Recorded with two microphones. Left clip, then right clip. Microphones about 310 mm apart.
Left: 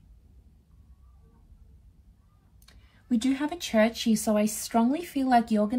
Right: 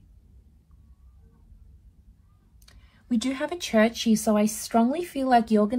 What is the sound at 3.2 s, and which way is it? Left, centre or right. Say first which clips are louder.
Speech: left 1 dB; right.